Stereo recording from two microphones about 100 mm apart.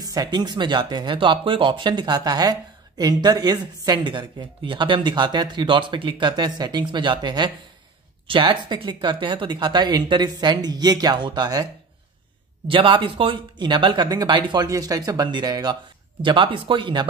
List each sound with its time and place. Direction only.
0.0 s speech: 40° right (ahead or behind)
12.6 s speech: 60° right (ahead or behind)